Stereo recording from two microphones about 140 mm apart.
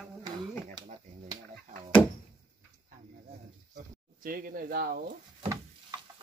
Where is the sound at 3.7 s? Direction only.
90° right.